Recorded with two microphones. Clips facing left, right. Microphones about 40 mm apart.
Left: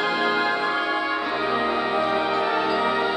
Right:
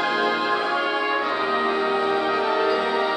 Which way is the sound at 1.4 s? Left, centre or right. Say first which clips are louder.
Right 1 dB; centre.